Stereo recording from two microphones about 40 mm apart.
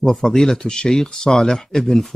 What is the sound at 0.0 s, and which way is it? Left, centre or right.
Speech, centre.